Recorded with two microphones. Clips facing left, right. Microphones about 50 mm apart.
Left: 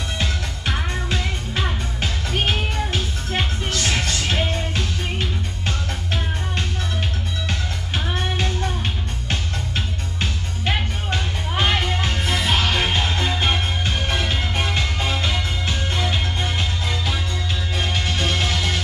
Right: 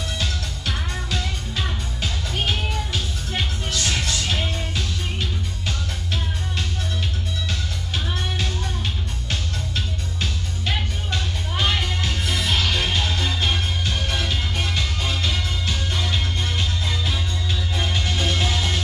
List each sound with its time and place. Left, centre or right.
0.2 s music: left
17.8 s music: left